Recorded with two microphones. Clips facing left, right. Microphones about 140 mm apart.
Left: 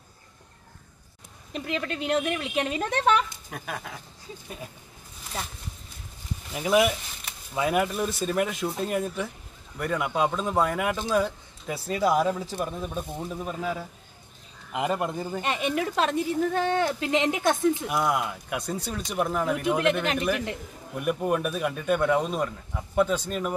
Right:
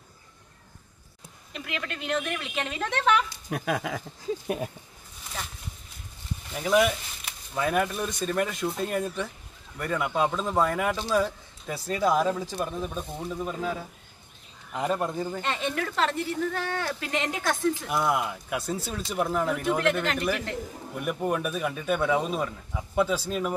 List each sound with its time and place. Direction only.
1.5 s speech: 35° left (ahead or behind)
2.1 s a woman's voice: 15° left (ahead or behind)
3.4 s speech: 80° right
6.5 s a woman's voice: 5° left (ahead or behind); by 17.8 s 20° left (ahead or behind)
17.8 s speech: centre (ahead or behind)
19.6 s a woman's voice: 20° left (ahead or behind)
20.9 s speech: centre (ahead or behind)